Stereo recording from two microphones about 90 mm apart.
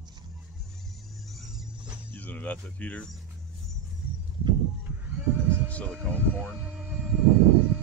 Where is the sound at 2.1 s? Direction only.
15° left (ahead or behind).